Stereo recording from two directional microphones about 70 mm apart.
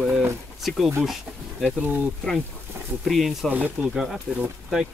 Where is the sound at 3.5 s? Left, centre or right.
Right.